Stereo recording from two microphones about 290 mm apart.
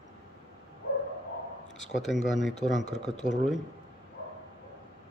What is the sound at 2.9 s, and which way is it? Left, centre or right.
Speech, right.